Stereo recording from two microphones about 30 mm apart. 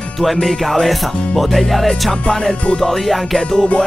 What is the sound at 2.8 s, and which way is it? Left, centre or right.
Music, centre.